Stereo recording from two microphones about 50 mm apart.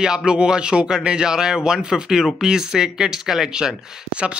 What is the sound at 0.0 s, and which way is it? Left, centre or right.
Speech, centre.